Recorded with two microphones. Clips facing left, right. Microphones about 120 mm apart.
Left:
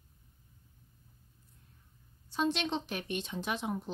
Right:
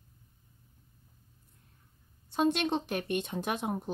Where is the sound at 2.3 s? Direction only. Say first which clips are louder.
Right 4 dB; 50° right (ahead or behind).